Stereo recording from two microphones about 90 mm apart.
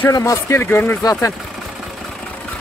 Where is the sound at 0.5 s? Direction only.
25° left (ahead or behind).